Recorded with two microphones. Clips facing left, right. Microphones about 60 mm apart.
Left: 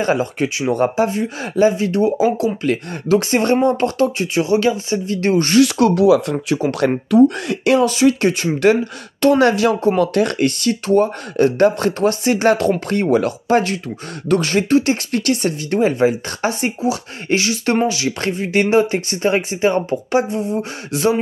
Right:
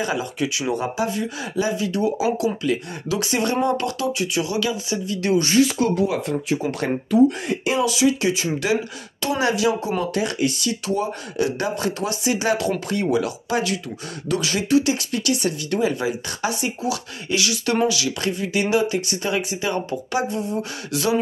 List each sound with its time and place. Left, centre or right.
0.0 s speech: left
5.5 s speech: left
6.5 s speech: left
7.8 s speech: left